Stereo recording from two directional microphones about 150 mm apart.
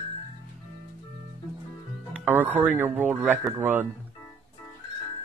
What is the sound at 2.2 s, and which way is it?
Speech, 10° right (ahead or behind).